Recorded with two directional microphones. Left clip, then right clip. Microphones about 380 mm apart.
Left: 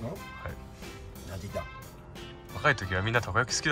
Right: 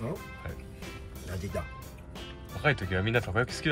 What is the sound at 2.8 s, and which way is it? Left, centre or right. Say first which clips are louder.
Speech: even; left.